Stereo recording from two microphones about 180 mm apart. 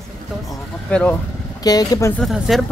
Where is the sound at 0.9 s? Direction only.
5° left (ahead or behind).